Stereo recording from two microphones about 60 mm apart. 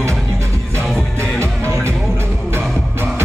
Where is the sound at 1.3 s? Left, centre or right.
Right.